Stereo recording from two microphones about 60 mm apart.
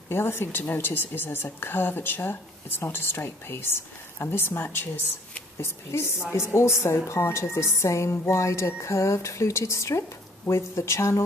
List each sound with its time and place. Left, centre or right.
0.1 s a woman's voice: left
5.9 s a woman's voice: left